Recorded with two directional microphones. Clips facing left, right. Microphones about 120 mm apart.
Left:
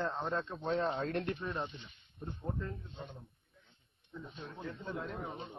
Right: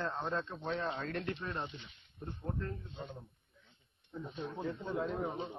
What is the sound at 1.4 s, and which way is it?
A man's voice, centre (ahead or behind).